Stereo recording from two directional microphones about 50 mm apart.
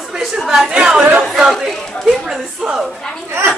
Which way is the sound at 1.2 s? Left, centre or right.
Centre.